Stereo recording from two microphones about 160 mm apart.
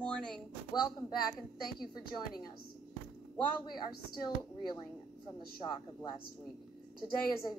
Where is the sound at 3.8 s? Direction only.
25° left (ahead or behind).